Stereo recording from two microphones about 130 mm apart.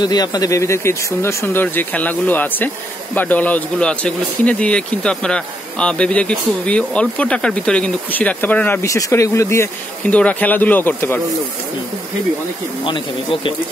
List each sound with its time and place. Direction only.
0.0 s speech: 30° left (ahead or behind); by 8.8 s 10° left (ahead or behind)
8.8 s speech: 25° left (ahead or behind)
12.8 s speech: 40° left (ahead or behind)